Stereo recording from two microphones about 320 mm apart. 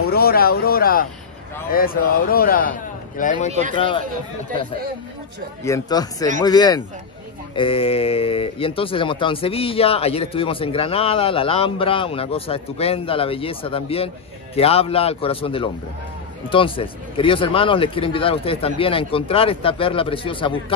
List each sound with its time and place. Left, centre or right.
0.1 s a man's voice: left
5.6 s speech: centre